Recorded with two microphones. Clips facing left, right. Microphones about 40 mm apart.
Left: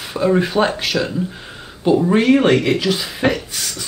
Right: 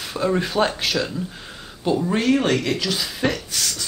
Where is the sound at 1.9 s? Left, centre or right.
Centre.